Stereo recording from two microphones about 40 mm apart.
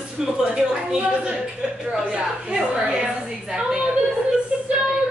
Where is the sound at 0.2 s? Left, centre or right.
Centre.